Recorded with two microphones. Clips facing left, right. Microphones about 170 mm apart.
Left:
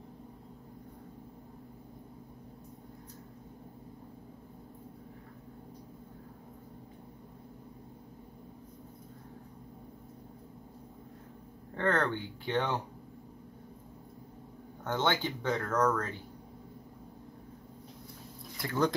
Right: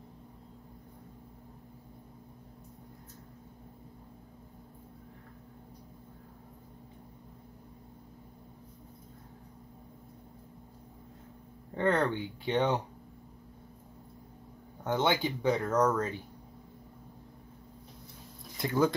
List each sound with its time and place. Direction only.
11.7 s speech: 15° right (ahead or behind)
14.8 s speech: 15° right (ahead or behind)
18.6 s speech: 20° right (ahead or behind)